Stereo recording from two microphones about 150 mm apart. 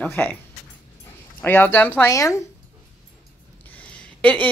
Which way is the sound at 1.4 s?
15° left (ahead or behind).